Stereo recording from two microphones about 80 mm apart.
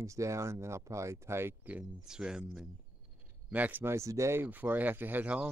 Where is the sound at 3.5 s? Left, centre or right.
Right.